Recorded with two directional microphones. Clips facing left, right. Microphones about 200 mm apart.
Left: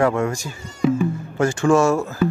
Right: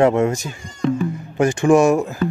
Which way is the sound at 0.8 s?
5° left (ahead or behind).